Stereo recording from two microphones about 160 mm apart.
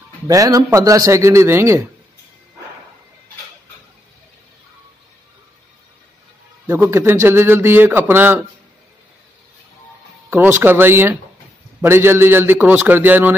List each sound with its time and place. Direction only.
0.3 s a man's voice: 20° right (ahead or behind)
6.7 s a man's voice: 15° right (ahead or behind)
10.3 s a man's voice: 15° right (ahead or behind)